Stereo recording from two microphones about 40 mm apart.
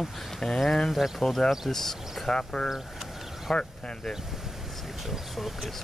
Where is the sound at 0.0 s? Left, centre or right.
Centre.